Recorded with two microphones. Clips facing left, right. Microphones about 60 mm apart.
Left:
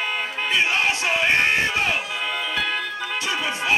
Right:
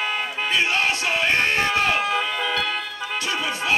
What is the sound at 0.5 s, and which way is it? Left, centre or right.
Music, centre.